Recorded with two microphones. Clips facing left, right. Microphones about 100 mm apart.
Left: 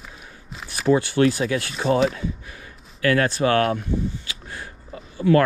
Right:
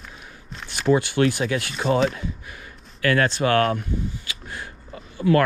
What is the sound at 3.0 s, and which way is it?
Speech, 30° left (ahead or behind).